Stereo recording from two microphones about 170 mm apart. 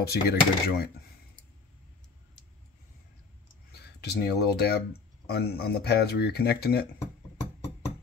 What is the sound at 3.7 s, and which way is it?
Speech, 70° left (ahead or behind).